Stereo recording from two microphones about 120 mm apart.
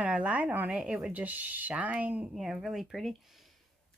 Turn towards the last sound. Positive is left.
turn(degrees=0)  # may be behind; listen again after turning